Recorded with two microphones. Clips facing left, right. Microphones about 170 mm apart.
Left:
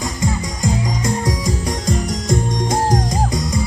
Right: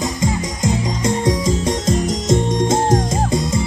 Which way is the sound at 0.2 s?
20° right (ahead or behind).